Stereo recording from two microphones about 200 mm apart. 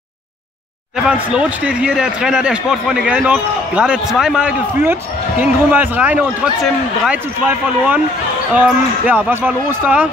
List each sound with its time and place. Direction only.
0.9 s a man's voice: 5° right (ahead or behind)